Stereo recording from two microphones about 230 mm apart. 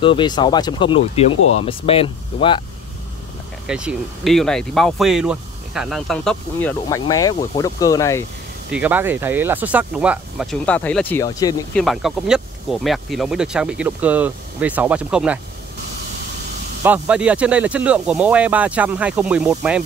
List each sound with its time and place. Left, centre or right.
0.0 s speech: left
1.3 s speech: left
1.6 s speech: left
3.6 s speech: centre
8.7 s speech: centre
11.7 s speech: centre
16.8 s speech: centre